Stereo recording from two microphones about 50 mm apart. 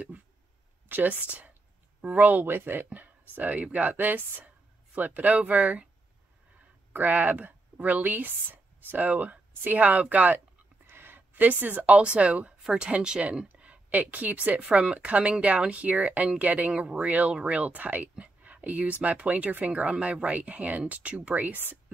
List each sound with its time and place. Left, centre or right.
0.8 s speech: right
6.9 s speech: right
10.9 s speech: right